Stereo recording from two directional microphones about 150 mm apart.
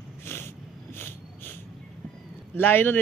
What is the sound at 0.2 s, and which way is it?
Snort, 15° left (ahead or behind).